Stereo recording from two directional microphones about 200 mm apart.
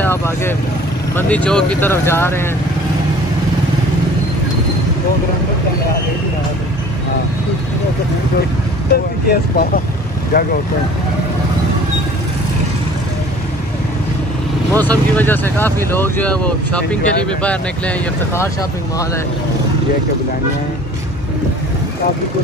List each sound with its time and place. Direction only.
0.0 s speech: 10° left (ahead or behind)
8.9 s speech: 50° left (ahead or behind)
14.7 s speech: 10° left (ahead or behind)